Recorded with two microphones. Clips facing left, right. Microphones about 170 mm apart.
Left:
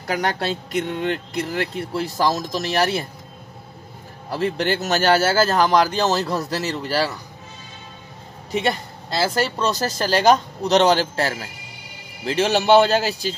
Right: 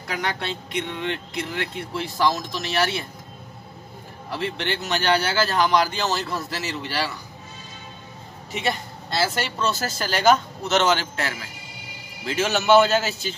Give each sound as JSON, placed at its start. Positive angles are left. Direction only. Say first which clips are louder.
{"t": 0.0, "sound": "speech", "louder": "left 5 dB", "side_deg": 40}
{"t": 4.3, "sound": "speech", "louder": "left 6 dB", "side_deg": 40}
{"t": 8.5, "sound": "speech", "louder": "left 4 dB", "side_deg": 35}